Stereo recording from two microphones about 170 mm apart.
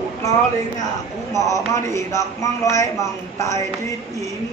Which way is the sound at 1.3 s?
20° left (ahead or behind).